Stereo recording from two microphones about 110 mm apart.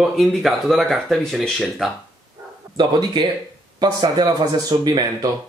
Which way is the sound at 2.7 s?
40° right (ahead or behind).